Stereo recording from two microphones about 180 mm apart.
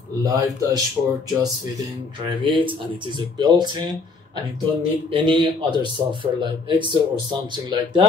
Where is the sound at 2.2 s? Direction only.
25° right (ahead or behind).